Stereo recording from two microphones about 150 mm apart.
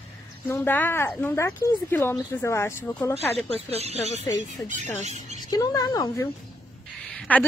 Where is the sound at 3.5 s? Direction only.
45° right (ahead or behind).